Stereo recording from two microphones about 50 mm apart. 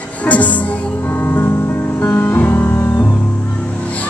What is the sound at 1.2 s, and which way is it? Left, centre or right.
Music, left.